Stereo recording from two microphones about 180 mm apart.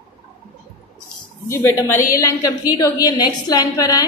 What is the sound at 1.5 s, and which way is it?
A woman's voice, 15° left (ahead or behind).